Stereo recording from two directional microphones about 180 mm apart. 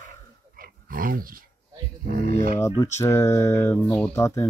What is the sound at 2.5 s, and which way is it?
Speech, 15° left (ahead or behind).